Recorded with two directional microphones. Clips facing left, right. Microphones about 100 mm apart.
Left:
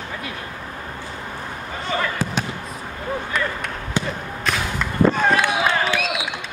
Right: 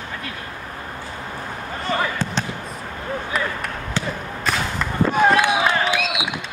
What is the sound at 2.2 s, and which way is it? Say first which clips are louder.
Basketball bounce: left 1 dB; 5° left (ahead or behind).